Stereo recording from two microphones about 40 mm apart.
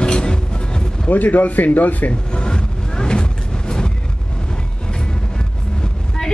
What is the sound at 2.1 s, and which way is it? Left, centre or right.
Vehicle, left.